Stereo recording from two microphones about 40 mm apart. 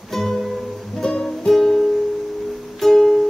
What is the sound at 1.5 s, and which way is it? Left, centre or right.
Music, centre.